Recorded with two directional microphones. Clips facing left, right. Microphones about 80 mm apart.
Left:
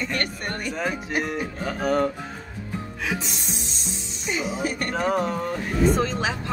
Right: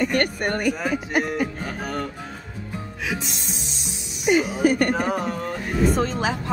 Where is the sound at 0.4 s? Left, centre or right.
Right.